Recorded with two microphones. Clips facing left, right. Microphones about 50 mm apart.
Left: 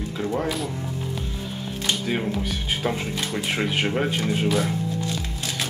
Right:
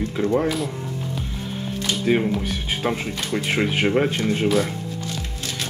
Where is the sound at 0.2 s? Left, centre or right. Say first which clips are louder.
Right 5 dB; centre.